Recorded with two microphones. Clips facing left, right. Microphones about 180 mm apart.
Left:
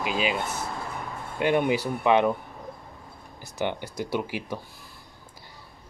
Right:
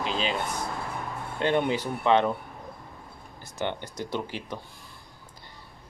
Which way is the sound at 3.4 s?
10° left (ahead or behind).